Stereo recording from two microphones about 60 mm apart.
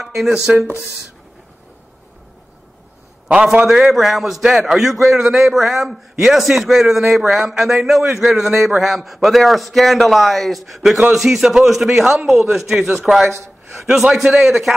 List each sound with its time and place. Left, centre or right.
0.0 s a sound: centre
0.5 s speech: right
3.7 s a man's voice: centre